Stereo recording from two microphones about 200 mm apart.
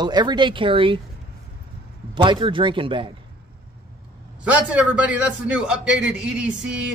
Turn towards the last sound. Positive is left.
turn(degrees=-5)  # may be behind; listen again after turning